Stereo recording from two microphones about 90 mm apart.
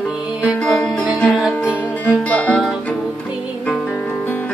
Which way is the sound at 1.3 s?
5° right (ahead or behind).